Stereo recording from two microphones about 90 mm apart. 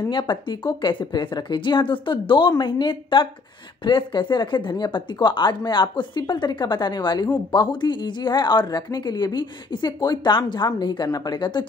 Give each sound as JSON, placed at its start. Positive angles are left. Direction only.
{"t": 0.0, "sound": "speech", "side_deg": 60}
{"t": 2.5, "sound": "speech", "side_deg": 60}